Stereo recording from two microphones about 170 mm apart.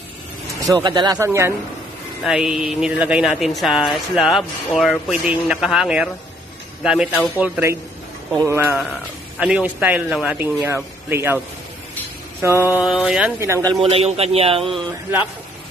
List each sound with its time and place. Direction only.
0.7 s speech: 25° right (ahead or behind)
2.2 s a man's voice: 5° right (ahead or behind)
12.8 s speech: centre (ahead or behind)
13.4 s speech: 15° right (ahead or behind)
13.8 s a man's voice: 35° right (ahead or behind)